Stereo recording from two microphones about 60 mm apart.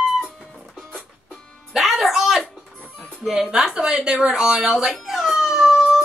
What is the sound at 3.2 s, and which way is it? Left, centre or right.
Speech, centre.